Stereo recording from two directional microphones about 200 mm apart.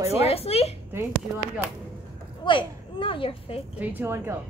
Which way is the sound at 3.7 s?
10° right (ahead or behind).